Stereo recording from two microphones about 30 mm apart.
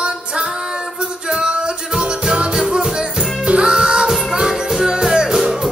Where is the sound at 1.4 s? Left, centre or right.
Right.